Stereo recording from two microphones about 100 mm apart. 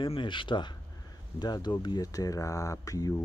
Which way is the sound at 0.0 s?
55° left (ahead or behind).